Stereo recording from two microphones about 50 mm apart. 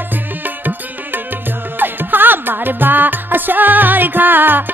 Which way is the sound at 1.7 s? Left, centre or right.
Right.